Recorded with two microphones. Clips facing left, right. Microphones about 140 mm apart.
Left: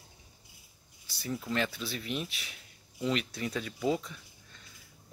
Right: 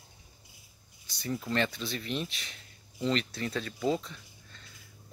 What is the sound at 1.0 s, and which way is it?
A man's voice, 5° left (ahead or behind).